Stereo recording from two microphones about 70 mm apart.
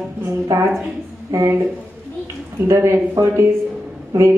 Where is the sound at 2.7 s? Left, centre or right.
Right.